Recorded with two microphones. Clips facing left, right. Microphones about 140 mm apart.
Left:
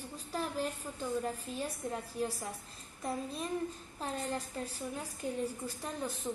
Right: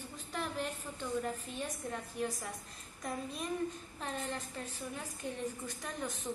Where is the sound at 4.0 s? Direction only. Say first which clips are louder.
Left 3 dB; 35° left (ahead or behind).